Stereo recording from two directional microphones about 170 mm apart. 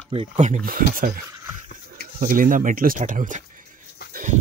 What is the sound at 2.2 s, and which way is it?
Speech, 55° right (ahead or behind).